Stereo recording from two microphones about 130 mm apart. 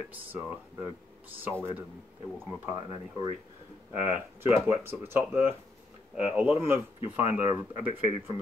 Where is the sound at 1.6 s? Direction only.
20° right (ahead or behind).